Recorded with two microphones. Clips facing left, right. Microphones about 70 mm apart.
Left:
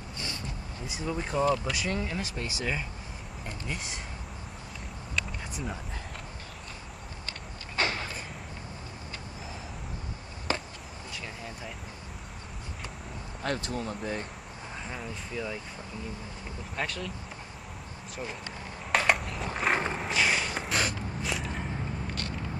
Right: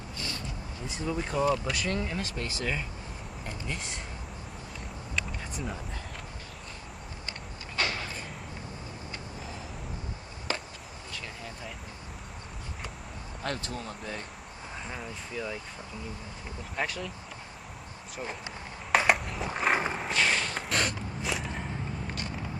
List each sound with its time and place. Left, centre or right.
0.8 s speech: centre
7.8 s a sound: left
13.4 s speech: centre
14.9 s speech: centre
16.7 s speech: centre
18.9 s skateboard: centre